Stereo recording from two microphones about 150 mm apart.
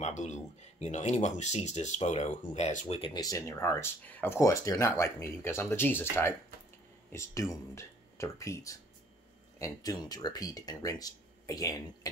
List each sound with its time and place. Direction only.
0.0 s speech: 50° left (ahead or behind)
3.0 s speech: 25° left (ahead or behind)